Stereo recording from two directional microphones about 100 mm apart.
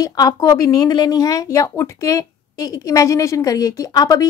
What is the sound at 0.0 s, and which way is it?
Speech, 40° left (ahead or behind).